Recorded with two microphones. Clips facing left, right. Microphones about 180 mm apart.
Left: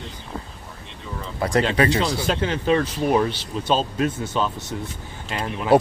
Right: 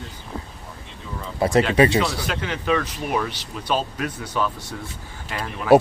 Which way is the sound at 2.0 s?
25° left (ahead or behind).